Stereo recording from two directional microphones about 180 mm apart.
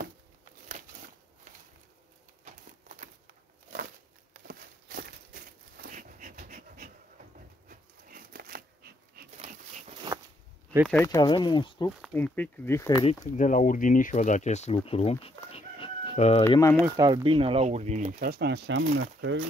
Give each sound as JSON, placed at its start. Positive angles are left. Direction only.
{"t": 2.4, "sound": "a sound", "side_deg": -45}
{"t": 4.5, "sound": "a sound", "side_deg": -55}
{"t": 7.6, "sound": "dog", "side_deg": -50}
{"t": 9.4, "sound": "a sound", "side_deg": -40}
{"t": 10.9, "sound": "speech", "side_deg": 10}
{"t": 11.1, "sound": "speech", "side_deg": 25}
{"t": 12.1, "sound": "speech", "side_deg": 10}
{"t": 13.0, "sound": "speech", "side_deg": 40}
{"t": 16.4, "sound": "speech", "side_deg": 15}
{"t": 16.8, "sound": "speech", "side_deg": -20}
{"t": 18.2, "sound": "speech", "side_deg": -60}